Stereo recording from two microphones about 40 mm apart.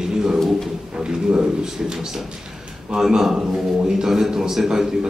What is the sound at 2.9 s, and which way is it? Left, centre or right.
Speech, centre.